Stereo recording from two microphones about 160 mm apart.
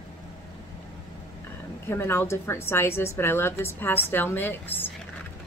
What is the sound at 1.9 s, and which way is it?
A woman's voice, 15° left (ahead or behind).